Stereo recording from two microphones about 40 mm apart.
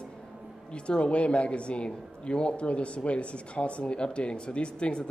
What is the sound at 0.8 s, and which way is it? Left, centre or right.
Speech, left.